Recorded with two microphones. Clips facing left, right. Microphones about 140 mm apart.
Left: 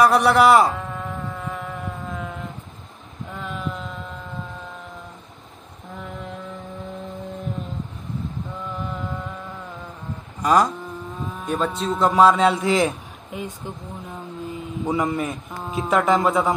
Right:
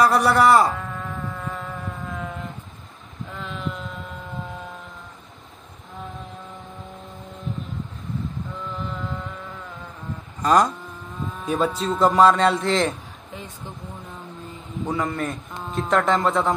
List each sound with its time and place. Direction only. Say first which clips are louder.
0.0 s a man's voice: left 2 dB; centre (ahead or behind)
0.7 s sheep: left 2 dB; 20° left (ahead or behind)
1.4 s a sound: left 1 dB; centre (ahead or behind)
10.4 s a man's voice: even; 5° left (ahead or behind)
15.0 s a man's voice: left 2 dB; centre (ahead or behind)